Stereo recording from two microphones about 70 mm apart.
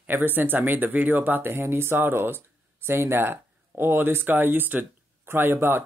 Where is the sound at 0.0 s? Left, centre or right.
Right.